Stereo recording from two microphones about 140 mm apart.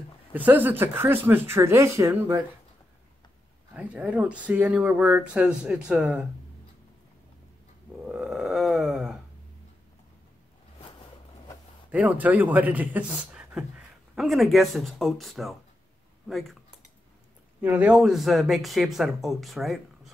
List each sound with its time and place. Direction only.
0.3 s a man's voice: 10° right (ahead or behind)
3.7 s a man's voice: 10° right (ahead or behind)
8.0 s a sound: centre (ahead or behind)
11.9 s a man's voice: 10° right (ahead or behind)
17.6 s speech: 10° right (ahead or behind)